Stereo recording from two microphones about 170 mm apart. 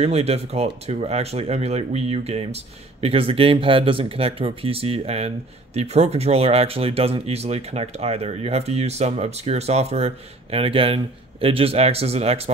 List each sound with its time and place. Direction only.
0.0 s speech: 40° right (ahead or behind)